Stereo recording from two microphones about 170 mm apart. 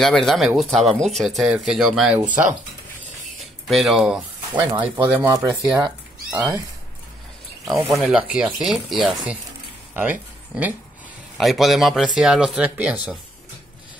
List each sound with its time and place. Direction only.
0.0 s speech: centre (ahead or behind)
3.6 s speech: centre (ahead or behind)
5.3 s speech: 20° right (ahead or behind)
7.6 s speech: centre (ahead or behind)